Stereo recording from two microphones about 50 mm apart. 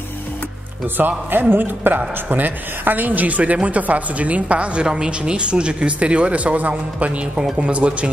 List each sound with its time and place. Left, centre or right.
0.9 s a man's voice: right